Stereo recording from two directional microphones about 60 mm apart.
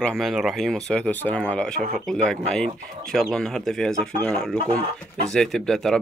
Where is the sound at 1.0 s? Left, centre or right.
Left.